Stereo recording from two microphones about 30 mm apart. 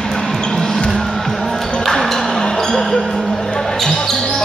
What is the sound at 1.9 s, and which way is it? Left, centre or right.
Music, centre.